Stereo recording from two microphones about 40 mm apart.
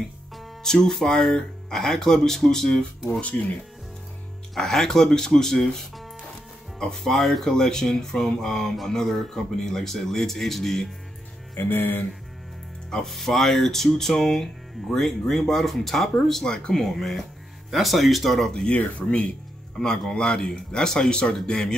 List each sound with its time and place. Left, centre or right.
0.7 s speech: centre
3.1 s speech: left
4.6 s speech: centre
11.5 s speech: left
12.9 s speech: centre
16.7 s speech: centre
18.7 s speech: left
19.0 s speech: left
20.1 s speech: centre